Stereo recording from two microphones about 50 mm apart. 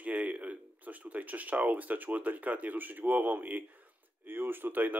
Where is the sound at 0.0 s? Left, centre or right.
Right.